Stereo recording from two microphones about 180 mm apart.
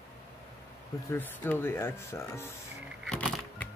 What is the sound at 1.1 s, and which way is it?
Speech, 10° left (ahead or behind).